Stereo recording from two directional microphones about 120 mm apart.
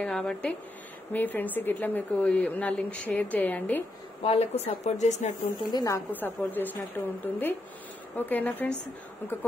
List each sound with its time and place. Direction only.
0.0 s a woman's voice: 5° left (ahead or behind)
4.2 s speech: 60° left (ahead or behind); by 5.3 s 75° left (ahead or behind)
5.7 s a woman's voice: 30° left (ahead or behind)
6.1 s a woman's voice: 15° left (ahead or behind)